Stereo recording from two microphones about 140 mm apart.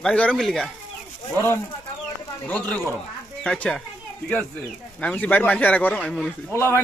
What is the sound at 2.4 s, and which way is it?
A man's voice, 10° left (ahead or behind).